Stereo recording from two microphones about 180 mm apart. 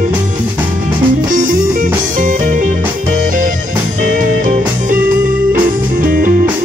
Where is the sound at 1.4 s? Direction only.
50° right (ahead or behind).